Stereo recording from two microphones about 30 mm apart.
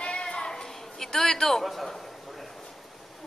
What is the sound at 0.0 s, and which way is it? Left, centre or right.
Bleat, left.